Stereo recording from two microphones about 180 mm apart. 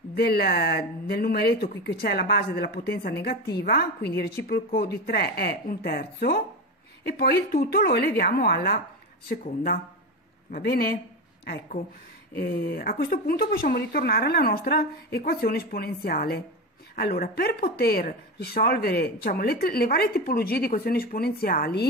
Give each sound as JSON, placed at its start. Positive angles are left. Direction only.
{"t": 0.1, "sound": "speech", "side_deg": 60}
{"t": 12.4, "sound": "speech", "side_deg": 60}